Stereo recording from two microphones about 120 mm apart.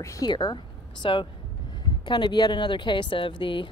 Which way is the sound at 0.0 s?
25° left (ahead or behind).